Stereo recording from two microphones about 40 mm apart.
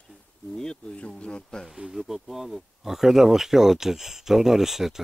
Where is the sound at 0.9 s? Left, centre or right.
Left.